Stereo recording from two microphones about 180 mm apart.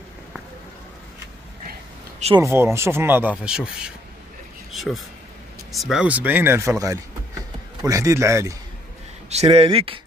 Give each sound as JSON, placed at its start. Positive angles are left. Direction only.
{"t": 2.3, "sound": "speech", "side_deg": -15}
{"t": 9.3, "sound": "speech", "side_deg": -35}